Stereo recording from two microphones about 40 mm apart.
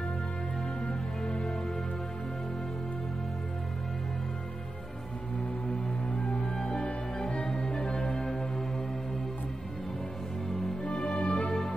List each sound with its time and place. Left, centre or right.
0.6 s music: centre
5.7 s music: centre
10.8 s music: left